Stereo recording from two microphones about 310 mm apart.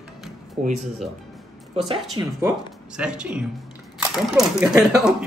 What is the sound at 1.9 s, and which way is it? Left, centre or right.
Speech, centre.